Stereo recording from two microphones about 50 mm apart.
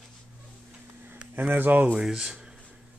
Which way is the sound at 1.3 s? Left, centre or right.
Right.